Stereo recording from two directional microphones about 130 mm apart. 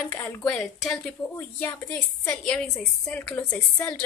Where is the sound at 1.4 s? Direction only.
15° left (ahead or behind).